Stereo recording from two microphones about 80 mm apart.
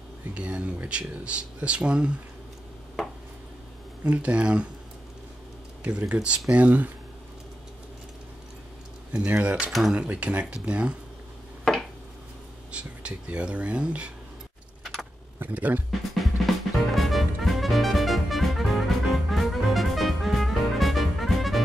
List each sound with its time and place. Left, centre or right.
0.3 s speech: centre
4.0 s speech: centre
5.9 s speech: centre
9.1 s speech: centre
9.7 s speech: centre
9.9 s speech: centre
12.7 s speech: centre
15.3 s speech: right
15.9 s music: centre